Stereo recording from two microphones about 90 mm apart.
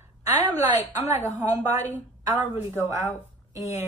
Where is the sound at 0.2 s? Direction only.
35° right (ahead or behind).